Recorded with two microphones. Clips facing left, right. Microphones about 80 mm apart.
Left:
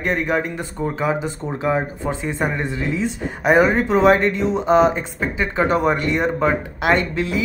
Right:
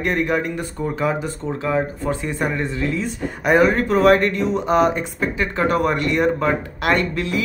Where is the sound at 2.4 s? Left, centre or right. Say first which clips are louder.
Right 2 dB; left.